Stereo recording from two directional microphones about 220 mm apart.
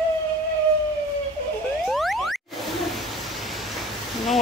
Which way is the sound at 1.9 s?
Centre (ahead or behind).